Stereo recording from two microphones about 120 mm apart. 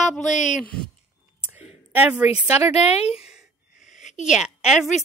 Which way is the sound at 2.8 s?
60° left (ahead or behind).